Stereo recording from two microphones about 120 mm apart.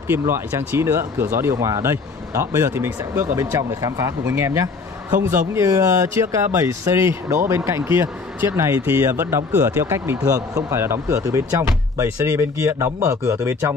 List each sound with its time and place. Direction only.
0.1 s speech: 20° right (ahead or behind)